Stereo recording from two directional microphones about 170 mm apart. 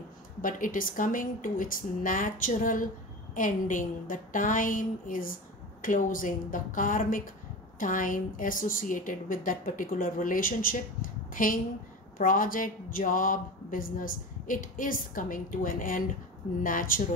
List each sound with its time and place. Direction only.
0.4 s speech: 55° left (ahead or behind)